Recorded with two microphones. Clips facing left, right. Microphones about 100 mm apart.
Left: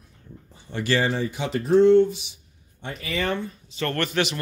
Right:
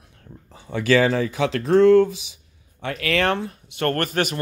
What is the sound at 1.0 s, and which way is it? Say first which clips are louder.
Speech: right 5 dB; 90° right.